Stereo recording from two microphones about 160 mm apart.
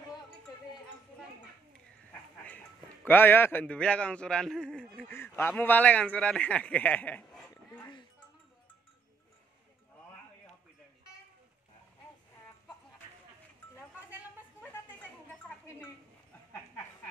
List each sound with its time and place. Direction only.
3.1 s a man's voice: 15° left (ahead or behind)